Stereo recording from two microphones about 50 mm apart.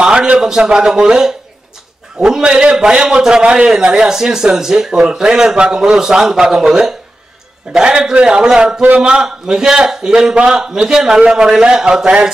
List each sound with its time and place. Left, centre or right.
0.0 s a man's voice: centre